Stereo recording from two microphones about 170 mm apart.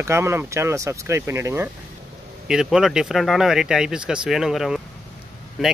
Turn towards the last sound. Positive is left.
turn(degrees=0)  # may be behind; listen again after turning